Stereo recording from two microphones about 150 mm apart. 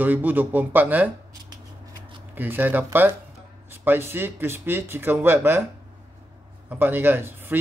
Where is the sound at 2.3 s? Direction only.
15° right (ahead or behind).